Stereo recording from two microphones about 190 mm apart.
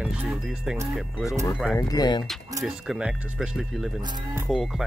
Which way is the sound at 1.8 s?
20° left (ahead or behind).